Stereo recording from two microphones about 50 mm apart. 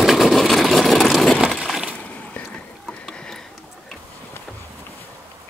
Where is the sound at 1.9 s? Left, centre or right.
Left.